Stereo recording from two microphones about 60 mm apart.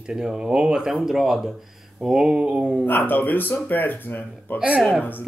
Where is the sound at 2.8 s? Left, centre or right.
Left.